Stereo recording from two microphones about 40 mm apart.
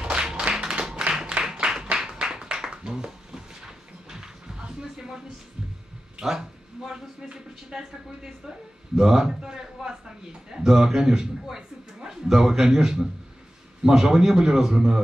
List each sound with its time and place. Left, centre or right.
0.0 s clapping: right
1.4 s a sound: centre
6.2 s a man's voice: centre